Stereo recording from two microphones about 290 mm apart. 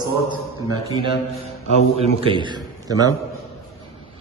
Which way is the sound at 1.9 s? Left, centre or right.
Centre.